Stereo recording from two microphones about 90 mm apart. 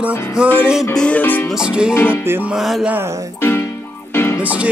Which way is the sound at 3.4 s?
25° left (ahead or behind).